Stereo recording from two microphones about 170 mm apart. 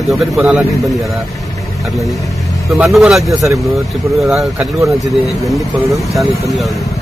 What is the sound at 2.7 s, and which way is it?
Speech, centre (ahead or behind).